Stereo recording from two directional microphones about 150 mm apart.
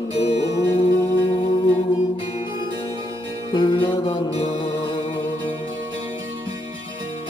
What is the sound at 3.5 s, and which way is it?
Music, 30° left (ahead or behind).